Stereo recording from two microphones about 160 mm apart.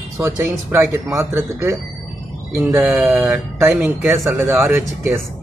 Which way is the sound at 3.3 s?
20° right (ahead or behind).